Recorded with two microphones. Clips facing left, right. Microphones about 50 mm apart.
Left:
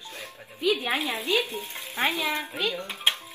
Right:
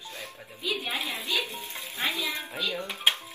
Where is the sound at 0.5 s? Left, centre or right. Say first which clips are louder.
Left 6 dB; left.